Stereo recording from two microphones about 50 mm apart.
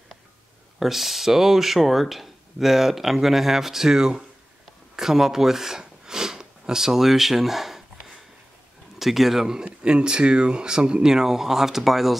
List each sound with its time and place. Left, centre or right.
0.7 s speech: centre
4.9 s a sound: centre
8.9 s speech: centre